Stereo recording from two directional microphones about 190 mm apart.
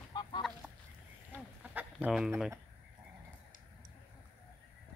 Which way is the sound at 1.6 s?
10° right (ahead or behind).